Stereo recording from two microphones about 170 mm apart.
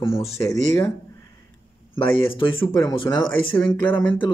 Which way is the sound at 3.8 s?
10° left (ahead or behind).